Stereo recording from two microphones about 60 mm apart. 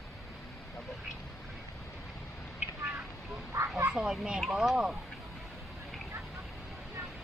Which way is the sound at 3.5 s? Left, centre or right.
Right.